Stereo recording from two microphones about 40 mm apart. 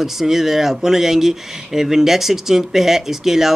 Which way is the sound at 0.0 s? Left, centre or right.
Centre.